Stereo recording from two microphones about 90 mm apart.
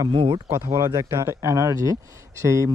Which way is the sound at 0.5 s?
35° right (ahead or behind).